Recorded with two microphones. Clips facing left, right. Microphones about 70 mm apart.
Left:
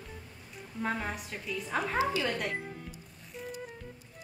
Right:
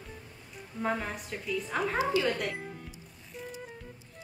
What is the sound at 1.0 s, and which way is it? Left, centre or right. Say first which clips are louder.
Speech: even; centre.